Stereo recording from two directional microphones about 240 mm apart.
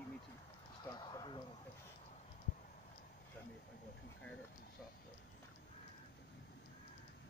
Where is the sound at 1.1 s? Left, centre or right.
Centre.